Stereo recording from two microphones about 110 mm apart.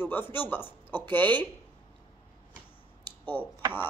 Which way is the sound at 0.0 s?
20° left (ahead or behind).